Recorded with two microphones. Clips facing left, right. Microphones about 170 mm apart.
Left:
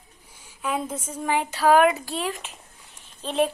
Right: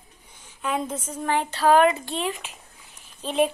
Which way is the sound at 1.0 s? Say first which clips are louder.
Left 2 dB; 10° left (ahead or behind).